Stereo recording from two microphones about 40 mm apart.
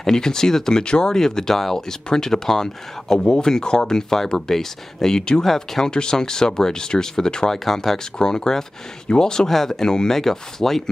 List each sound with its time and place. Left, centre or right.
0.0 s speech: centre
5.9 s speech: centre